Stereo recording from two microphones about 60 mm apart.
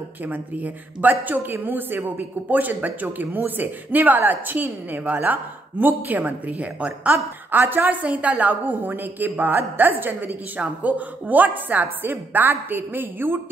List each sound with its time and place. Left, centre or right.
0.2 s a woman's voice: right